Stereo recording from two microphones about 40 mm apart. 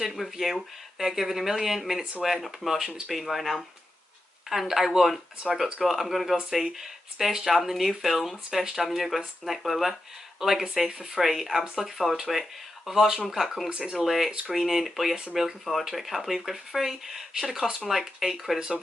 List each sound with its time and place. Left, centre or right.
0.0 s speech: centre
13.7 s speech: centre
14.0 s speech: centre